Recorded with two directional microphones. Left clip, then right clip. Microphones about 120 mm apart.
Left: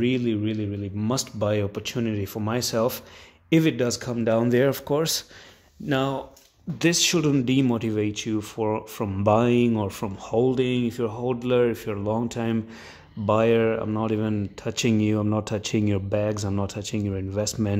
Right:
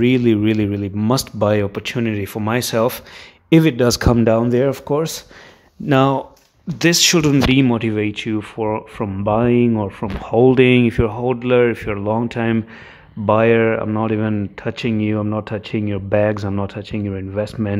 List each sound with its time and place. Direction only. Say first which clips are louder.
0.0 s speech: right 9 dB; 45° right (ahead or behind)
1.6 s speech: right 7 dB; 20° right (ahead or behind)
3.8 s speech: right 11 dB; 55° right (ahead or behind)
4.4 s speech: right 4 dB; 15° right (ahead or behind)
5.9 s speech: right 10 dB; 40° right (ahead or behind)
6.8 s speech: right 7 dB; 10° right (ahead or behind); by 10.1 s 10° left (ahead or behind)
10.2 s speech: right 9 dB; 10° right (ahead or behind)
10.5 s speech: right 12 dB; 25° right (ahead or behind); by 16.0 s 20° left (ahead or behind)
16.1 s speech: right 9 dB; 5° right (ahead or behind)
16.5 s speech: right 5 dB; 10° left (ahead or behind)